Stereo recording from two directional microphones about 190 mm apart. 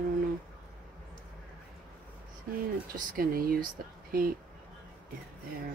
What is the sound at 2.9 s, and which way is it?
Speech, 50° right (ahead or behind).